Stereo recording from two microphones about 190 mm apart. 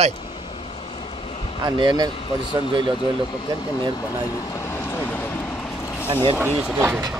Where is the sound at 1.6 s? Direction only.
20° right (ahead or behind).